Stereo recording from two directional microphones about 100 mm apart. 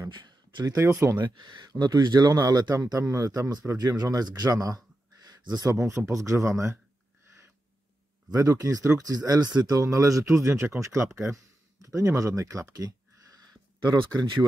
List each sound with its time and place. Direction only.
0.1 s a sound: 50° right (ahead or behind)
0.7 s speech: 30° right (ahead or behind)
1.1 s speech: 50° right (ahead or behind); by 6.8 s 30° right (ahead or behind)
8.3 s speech: 35° right (ahead or behind)